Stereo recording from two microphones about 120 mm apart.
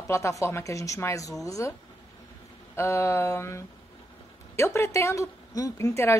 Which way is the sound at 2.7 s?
20° left (ahead or behind).